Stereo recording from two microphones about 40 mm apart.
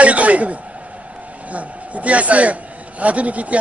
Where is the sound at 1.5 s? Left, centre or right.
Right.